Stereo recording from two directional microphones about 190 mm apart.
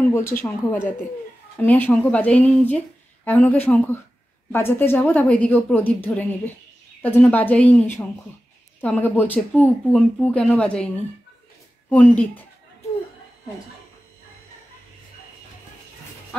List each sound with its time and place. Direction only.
0.0 s speech: 10° left (ahead or behind)